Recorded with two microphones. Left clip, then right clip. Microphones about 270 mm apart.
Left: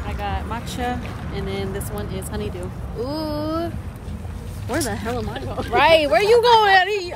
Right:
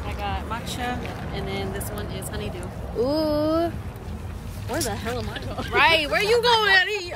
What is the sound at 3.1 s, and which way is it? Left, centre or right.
Speech, right.